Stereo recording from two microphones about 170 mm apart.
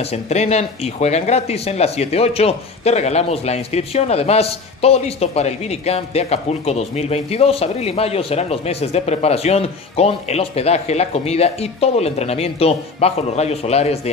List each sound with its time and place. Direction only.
0.0 s speech: 40° left (ahead or behind)